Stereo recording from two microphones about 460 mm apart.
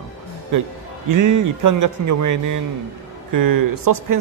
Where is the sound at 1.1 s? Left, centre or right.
Right.